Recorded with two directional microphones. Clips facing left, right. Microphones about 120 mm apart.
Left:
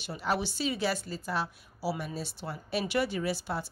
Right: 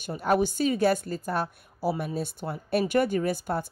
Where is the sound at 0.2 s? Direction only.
50° right (ahead or behind).